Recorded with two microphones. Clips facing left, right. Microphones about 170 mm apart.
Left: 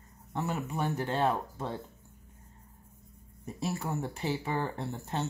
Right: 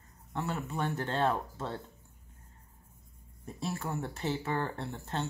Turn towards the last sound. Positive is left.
turn(degrees=15)  # may be behind; listen again after turning